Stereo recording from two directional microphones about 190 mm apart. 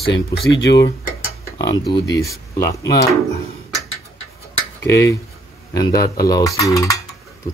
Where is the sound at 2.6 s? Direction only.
55° left (ahead or behind).